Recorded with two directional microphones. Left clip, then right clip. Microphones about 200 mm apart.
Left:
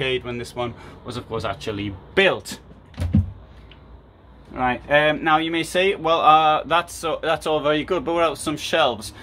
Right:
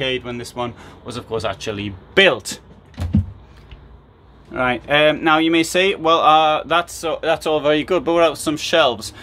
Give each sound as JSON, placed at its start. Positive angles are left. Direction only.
{"t": 0.0, "sound": "speech", "side_deg": -10}
{"t": 4.6, "sound": "speech", "side_deg": -25}